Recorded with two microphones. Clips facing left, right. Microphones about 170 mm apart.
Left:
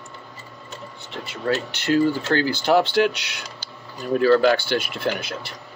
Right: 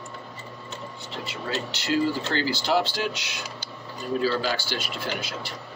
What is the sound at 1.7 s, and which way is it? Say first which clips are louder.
Speech: left 4 dB; 55° left (ahead or behind).